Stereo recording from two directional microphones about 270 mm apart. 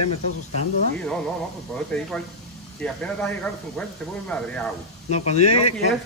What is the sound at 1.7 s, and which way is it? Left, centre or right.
Speech, centre.